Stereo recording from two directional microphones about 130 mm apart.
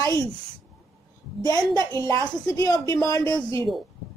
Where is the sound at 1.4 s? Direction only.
30° left (ahead or behind).